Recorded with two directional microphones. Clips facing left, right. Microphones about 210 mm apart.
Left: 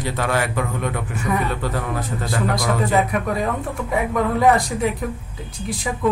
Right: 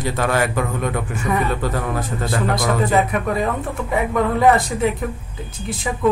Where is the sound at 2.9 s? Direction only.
Centre (ahead or behind).